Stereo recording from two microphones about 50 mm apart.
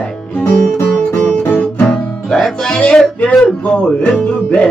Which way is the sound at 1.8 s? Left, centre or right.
Centre.